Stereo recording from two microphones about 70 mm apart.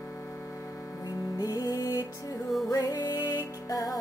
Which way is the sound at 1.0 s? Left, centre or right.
Left.